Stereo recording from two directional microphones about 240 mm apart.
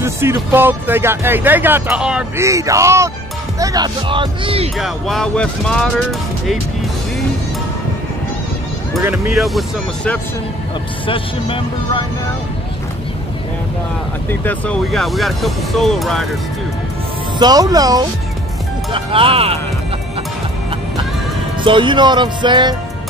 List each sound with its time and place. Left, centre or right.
0.0 s speech: centre
4.7 s speech: centre
9.0 s speech: centre
11.1 s speech: left
14.3 s speech: centre
17.4 s speech: centre
21.6 s speech: centre